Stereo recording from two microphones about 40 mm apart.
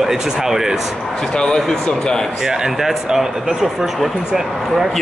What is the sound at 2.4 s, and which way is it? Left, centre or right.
Speech, centre.